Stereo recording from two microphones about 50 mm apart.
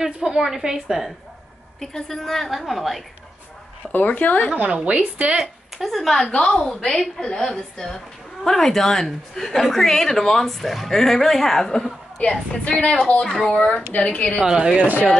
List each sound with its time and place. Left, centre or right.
0.0 s a woman's voice: centre
1.8 s a woman's voice: centre
3.9 s speech: left
4.6 s speech: right
5.4 s speech: centre
6.2 s a woman's voice: centre
12.3 s a woman's voice: centre
14.4 s speech: centre